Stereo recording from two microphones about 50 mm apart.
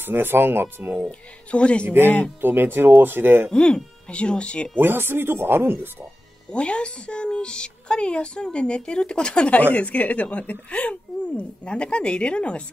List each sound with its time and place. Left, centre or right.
0.0 s speech: right
1.5 s speech: left
2.4 s speech: right
3.5 s speech: centre
4.7 s speech: right
6.5 s speech: left